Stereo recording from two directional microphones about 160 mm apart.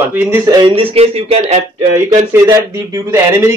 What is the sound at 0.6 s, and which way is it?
Speech, 35° right (ahead or behind).